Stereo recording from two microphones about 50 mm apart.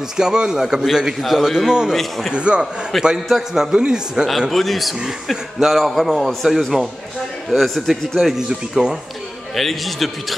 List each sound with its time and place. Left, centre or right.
0.2 s a man's voice: centre
2.3 s a man's voice: right
2.9 s a man's voice: centre
3.3 s a man's voice: centre
4.5 s a man's voice: centre
8.2 s a man's voice: centre
9.6 s a man's voice: centre